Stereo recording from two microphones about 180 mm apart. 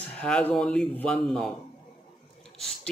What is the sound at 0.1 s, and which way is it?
Speech, 5° left (ahead or behind).